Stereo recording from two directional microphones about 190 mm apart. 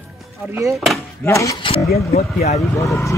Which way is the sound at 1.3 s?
15° left (ahead or behind).